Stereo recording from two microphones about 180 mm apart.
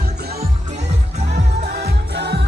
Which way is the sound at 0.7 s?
40° right (ahead or behind).